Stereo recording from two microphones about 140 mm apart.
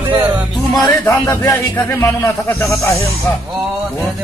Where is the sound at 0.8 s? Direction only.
20° left (ahead or behind).